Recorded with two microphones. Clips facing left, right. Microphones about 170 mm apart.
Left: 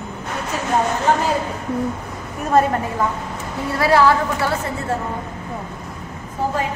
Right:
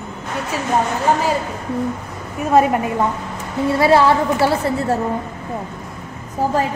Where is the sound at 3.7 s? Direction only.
25° right (ahead or behind).